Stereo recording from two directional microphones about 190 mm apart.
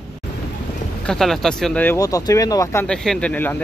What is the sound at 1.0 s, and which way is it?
Speech, centre (ahead or behind).